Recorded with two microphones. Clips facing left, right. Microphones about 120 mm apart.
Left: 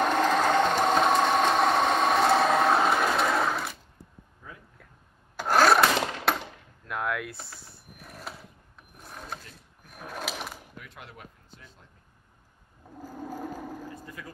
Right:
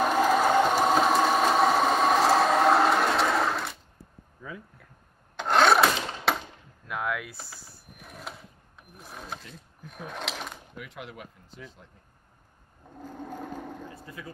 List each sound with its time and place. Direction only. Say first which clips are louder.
0.0 s a sound: right 1 dB; 5° right (ahead or behind)
5.3 s a sound: even; 5° left (ahead or behind)
9.0 s ratchet: even; centre (ahead or behind)
9.8 s sewing machine: even; 5° left (ahead or behind)
10.8 s speech: right 5 dB; 90° right
13.0 s sewing machine: left 1 dB; 5° left (ahead or behind)
14.0 s speech: right 1 dB; 20° right (ahead or behind)